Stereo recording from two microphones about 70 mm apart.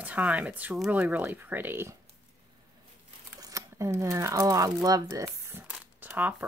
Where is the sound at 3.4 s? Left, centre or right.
Right.